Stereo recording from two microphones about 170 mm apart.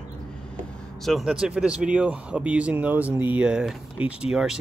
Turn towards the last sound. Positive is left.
turn(degrees=-5)  # may be behind; listen again after turning